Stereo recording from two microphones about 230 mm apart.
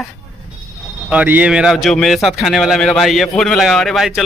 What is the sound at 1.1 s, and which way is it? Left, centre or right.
A man's voice, centre.